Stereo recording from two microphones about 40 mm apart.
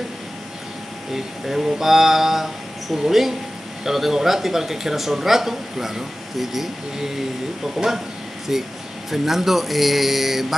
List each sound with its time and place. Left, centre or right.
1.1 s speech: centre